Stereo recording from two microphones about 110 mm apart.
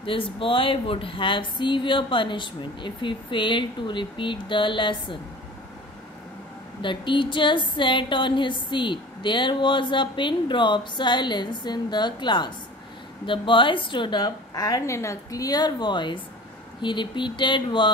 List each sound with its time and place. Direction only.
0.0 s speech: 55° left (ahead or behind)
6.8 s speech: 45° left (ahead or behind)
14.5 s speech: 35° left (ahead or behind); by 17.9 s 50° left (ahead or behind)